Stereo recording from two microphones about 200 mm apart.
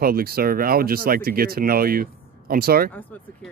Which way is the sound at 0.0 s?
50° right (ahead or behind).